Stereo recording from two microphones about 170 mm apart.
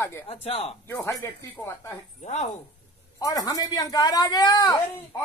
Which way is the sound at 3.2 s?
20° left (ahead or behind).